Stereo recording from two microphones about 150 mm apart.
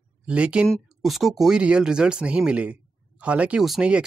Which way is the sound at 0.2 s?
10° right (ahead or behind).